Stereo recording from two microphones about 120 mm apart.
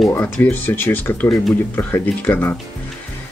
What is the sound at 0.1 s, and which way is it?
Speech, 20° left (ahead or behind).